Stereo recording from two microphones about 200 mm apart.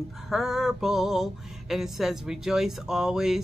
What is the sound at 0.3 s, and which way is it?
Music, centre (ahead or behind).